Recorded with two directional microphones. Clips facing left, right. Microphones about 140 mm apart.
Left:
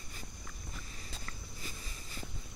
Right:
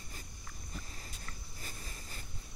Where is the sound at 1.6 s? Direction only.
45° right (ahead or behind).